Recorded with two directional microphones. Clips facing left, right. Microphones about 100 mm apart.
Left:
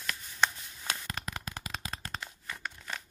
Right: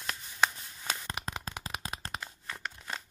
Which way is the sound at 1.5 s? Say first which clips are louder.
Right 1 dB; 35° right (ahead or behind).